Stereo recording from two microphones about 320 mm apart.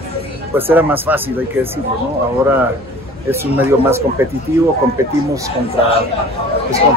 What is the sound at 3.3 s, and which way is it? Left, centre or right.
Speech, centre.